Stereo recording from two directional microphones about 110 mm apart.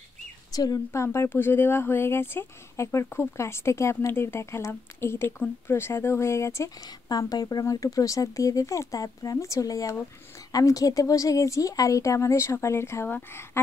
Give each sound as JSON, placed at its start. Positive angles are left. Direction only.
{"t": 0.5, "sound": "speech", "side_deg": 35}